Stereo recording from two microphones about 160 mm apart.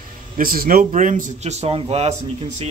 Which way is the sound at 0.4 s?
60° right (ahead or behind).